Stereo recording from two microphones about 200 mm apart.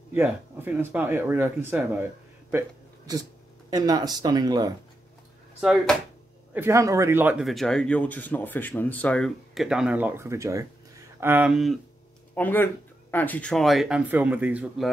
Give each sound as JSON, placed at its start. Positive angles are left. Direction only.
{"t": 0.1, "sound": "speech", "side_deg": -10}
{"t": 3.7, "sound": "speech", "side_deg": -20}
{"t": 5.6, "sound": "speech", "side_deg": 0}
{"t": 6.5, "sound": "speech", "side_deg": -15}
{"t": 12.4, "sound": "speech", "side_deg": 10}